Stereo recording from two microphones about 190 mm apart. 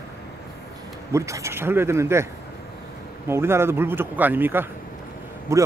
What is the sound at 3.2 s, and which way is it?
Speech, 15° right (ahead or behind).